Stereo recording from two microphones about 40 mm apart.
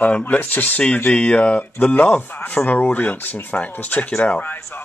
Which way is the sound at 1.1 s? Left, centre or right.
Left.